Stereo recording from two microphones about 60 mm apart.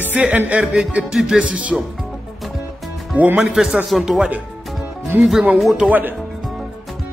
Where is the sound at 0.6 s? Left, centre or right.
Centre.